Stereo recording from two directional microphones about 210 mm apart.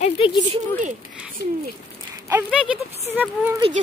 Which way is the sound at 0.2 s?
25° left (ahead or behind).